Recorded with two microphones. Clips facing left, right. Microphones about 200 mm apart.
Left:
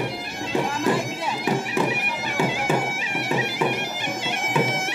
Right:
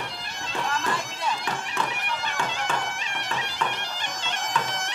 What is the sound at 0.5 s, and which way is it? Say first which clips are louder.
Bagpipes: left 7 dB; 10° left (ahead or behind).